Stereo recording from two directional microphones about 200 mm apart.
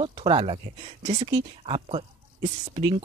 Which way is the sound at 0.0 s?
25° right (ahead or behind).